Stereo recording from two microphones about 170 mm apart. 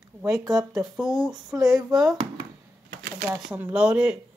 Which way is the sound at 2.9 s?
80° right.